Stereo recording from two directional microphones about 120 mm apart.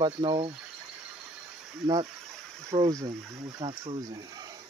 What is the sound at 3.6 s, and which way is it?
Speech, 50° right (ahead or behind).